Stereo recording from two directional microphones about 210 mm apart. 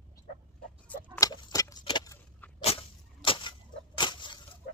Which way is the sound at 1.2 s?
15° left (ahead or behind).